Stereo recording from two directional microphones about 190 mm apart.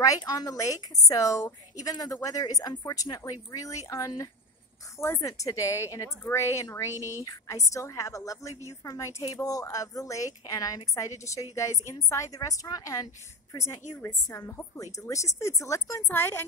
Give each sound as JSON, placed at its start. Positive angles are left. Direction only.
{"t": 0.0, "sound": "a woman's voice", "side_deg": 20}